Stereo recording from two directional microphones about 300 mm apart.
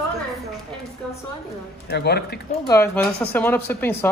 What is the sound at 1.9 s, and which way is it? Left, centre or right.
Speech, left.